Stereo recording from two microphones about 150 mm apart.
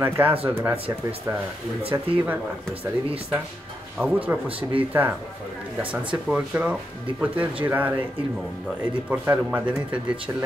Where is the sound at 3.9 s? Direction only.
10° right (ahead or behind).